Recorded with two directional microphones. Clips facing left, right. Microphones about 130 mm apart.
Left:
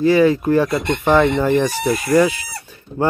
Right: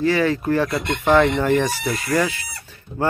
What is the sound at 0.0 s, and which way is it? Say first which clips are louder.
Speech: left 5 dB; 15° left (ahead or behind).